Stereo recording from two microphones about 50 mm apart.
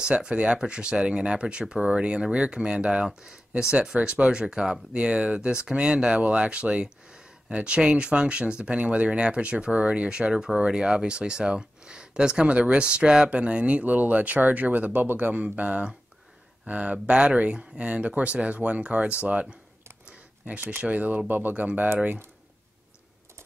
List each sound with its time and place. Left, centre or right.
0.0 s speech: centre
20.1 s a sound: right
20.8 s speech: right